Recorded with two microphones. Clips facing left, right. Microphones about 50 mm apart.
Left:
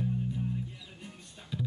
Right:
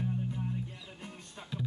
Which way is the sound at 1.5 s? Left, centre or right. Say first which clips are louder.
Left 2 dB; centre.